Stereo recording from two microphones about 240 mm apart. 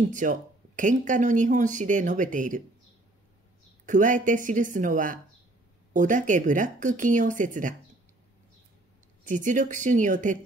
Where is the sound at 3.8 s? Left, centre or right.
Right.